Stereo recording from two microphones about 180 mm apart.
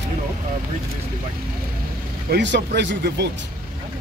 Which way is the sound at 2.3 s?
75° right (ahead or behind).